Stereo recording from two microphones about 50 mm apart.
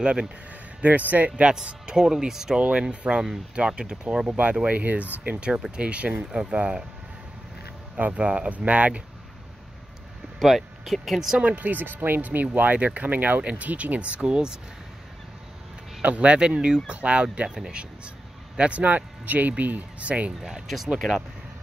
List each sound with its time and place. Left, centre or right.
0.0 s speech: centre
0.7 s speech: right
1.3 s speech: centre
5.3 s speech: centre
8.0 s speech: right
10.4 s speech: centre
11.3 s speech: right
16.0 s speech: right
18.6 s speech: right
20.3 s speech: centre